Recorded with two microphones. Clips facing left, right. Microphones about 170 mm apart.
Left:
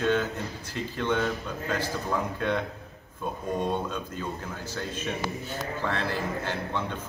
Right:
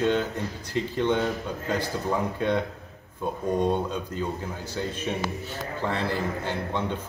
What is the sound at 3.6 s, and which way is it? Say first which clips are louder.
Speech: right 3 dB; 15° right (ahead or behind).